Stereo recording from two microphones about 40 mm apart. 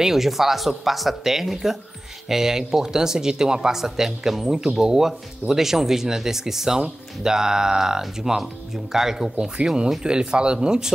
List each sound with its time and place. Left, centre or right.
0.0 s speech: centre
10.0 s speech: right